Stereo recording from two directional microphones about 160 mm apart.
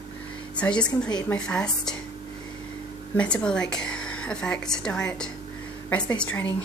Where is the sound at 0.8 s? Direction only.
25° left (ahead or behind).